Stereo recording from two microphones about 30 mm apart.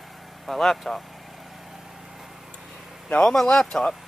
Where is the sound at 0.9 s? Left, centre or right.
Left.